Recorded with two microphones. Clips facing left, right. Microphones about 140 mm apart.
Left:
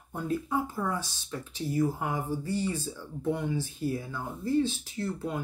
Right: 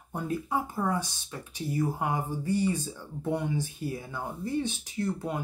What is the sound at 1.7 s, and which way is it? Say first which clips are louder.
Speech: even; 15° right (ahead or behind).